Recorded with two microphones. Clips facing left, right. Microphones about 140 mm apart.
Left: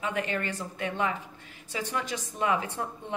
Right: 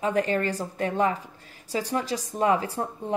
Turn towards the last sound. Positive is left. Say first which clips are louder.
# right 5 dB
turn(degrees=-35)  # may be behind; listen again after turning